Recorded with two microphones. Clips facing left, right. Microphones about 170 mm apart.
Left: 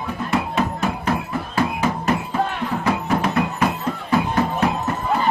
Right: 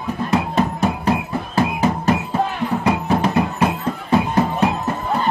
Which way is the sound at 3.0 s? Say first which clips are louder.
Right 2 dB; 30° right (ahead or behind).